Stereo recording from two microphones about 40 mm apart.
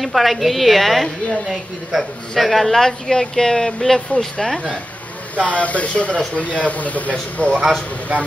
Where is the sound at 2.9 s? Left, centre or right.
Left.